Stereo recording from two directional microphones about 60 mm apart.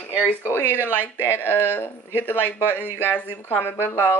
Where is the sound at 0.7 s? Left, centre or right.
Right.